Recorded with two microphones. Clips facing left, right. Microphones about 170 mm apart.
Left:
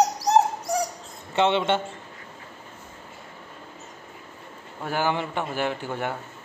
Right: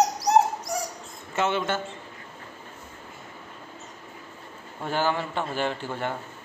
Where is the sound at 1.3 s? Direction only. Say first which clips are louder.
Left 4 dB; 25° left (ahead or behind).